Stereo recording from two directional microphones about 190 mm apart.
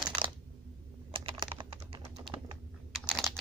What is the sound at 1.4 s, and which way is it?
Typing, 25° right (ahead or behind).